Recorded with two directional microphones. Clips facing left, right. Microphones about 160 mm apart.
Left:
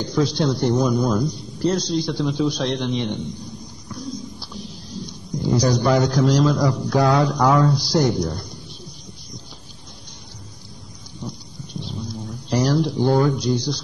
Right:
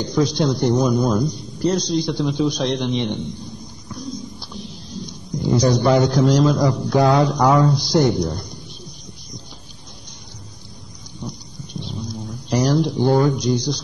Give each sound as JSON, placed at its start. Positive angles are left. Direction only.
{"t": 0.0, "sound": "a man's voice", "side_deg": -15}
{"t": 5.6, "sound": "a man's voice", "side_deg": -20}
{"t": 6.1, "sound": "a man's voice", "side_deg": 0}
{"t": 6.4, "sound": "a man's voice", "side_deg": -20}
{"t": 12.4, "sound": "speech", "side_deg": -15}